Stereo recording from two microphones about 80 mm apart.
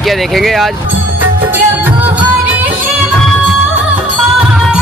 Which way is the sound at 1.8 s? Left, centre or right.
Right.